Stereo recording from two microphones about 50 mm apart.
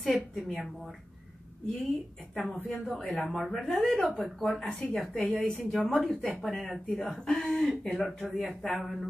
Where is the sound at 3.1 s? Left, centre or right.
Left.